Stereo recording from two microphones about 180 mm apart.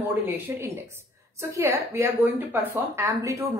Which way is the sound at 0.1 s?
15° right (ahead or behind).